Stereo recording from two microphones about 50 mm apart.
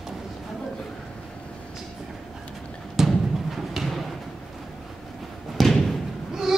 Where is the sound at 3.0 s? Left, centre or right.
Centre.